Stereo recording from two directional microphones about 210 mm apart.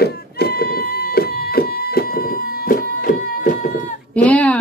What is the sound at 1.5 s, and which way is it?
Music, 45° left (ahead or behind).